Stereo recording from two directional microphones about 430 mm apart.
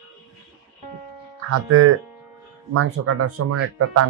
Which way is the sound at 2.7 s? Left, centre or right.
Right.